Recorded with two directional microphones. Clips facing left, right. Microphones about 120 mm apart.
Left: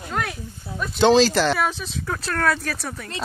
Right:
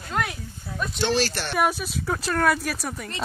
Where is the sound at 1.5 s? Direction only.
10° right (ahead or behind).